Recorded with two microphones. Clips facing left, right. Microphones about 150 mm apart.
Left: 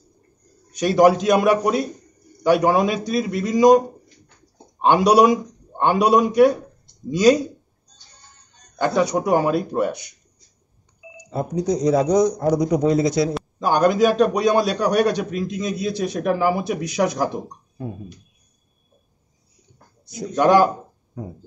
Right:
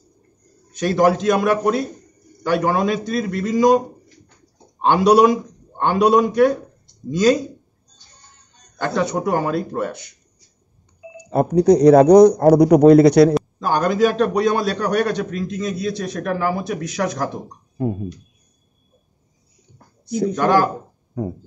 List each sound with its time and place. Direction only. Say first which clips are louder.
0.7 s a man's voice: left 2 dB; 15° left (ahead or behind)
4.8 s a man's voice: right 1 dB; 10° left (ahead or behind)
8.7 s a man's voice: left 2 dB; 10° left (ahead or behind)
11.1 s speech: right 7 dB; 60° right (ahead or behind)
13.3 s a man's voice: right 2 dB; 5° left (ahead or behind)
20.3 s a man's voice: left 3 dB; 15° left (ahead or behind)